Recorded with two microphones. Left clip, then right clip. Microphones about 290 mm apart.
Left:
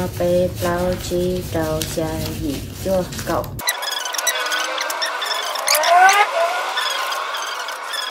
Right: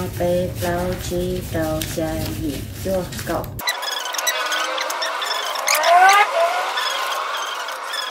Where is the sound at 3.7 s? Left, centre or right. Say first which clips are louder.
Even; centre.